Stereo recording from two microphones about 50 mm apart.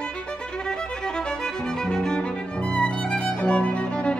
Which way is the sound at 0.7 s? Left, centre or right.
Centre.